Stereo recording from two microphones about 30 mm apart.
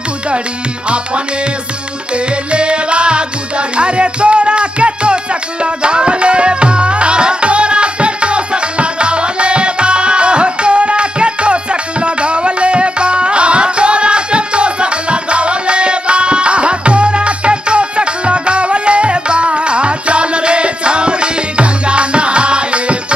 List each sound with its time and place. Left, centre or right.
0.8 s music: right